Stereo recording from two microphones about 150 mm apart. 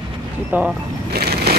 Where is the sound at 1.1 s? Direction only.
90° right.